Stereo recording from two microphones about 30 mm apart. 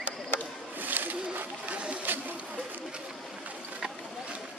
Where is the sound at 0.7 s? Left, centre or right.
Right.